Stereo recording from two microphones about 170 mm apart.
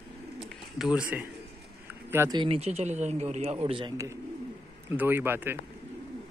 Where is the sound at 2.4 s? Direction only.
35° right (ahead or behind).